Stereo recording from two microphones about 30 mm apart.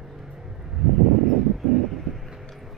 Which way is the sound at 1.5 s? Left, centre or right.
Centre.